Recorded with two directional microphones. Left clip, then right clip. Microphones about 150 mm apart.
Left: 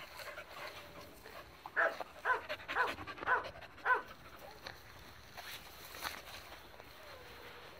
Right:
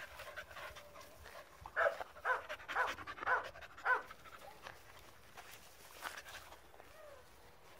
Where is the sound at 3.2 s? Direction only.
25° right (ahead or behind).